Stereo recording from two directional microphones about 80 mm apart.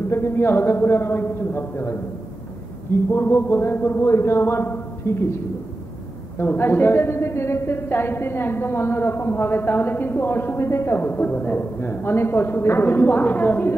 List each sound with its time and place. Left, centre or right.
0.1 s a man's voice: left
3.1 s a man's voice: left
6.3 s a woman's voice: left